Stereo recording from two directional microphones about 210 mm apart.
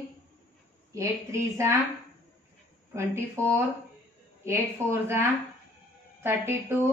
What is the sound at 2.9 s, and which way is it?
A woman's voice, 10° right (ahead or behind).